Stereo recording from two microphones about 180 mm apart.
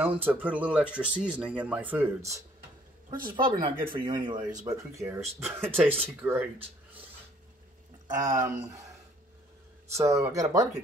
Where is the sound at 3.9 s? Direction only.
25° right (ahead or behind).